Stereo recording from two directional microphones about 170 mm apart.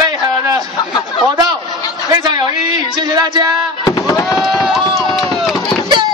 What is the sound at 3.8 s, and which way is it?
Speech, 20° left (ahead or behind).